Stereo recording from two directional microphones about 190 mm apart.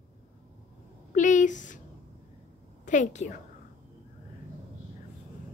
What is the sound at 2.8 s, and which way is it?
Speech, 40° left (ahead or behind).